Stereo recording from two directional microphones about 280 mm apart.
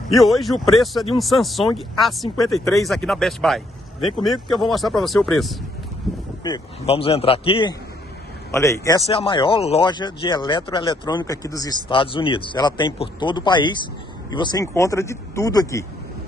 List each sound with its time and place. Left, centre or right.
0.1 s speech: centre
6.4 s speech: centre